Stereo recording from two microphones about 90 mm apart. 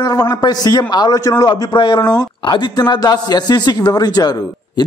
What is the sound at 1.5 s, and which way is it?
A man's voice, 60° left (ahead or behind).